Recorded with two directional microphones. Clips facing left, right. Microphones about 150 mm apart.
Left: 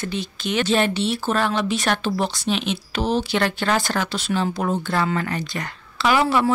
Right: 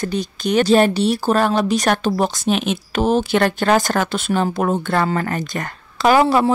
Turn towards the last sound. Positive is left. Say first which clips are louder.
# right 5 dB
turn(degrees=-40)  # may be behind; listen again after turning